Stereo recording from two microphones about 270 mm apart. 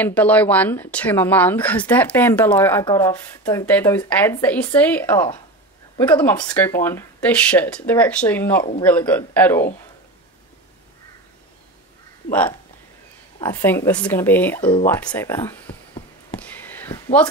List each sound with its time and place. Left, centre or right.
0.0 s speech: centre
13.4 s speech: centre
14.6 s speech: centre
14.9 s speech: centre
16.3 s a sound: centre